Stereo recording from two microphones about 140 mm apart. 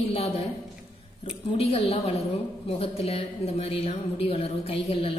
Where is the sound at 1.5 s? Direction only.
45° left (ahead or behind).